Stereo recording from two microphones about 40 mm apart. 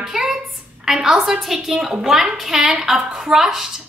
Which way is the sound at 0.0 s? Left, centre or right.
Centre.